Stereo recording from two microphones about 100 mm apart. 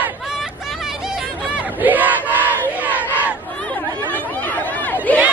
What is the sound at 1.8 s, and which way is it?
Battle cry, 15° right (ahead or behind).